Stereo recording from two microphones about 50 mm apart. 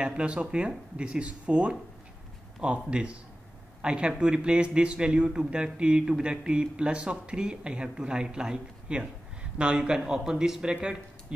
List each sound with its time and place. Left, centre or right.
0.0 s speech: centre